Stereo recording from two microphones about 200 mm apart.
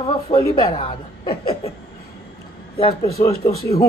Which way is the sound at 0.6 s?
30° left (ahead or behind).